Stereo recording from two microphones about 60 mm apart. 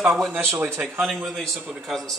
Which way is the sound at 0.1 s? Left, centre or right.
Centre.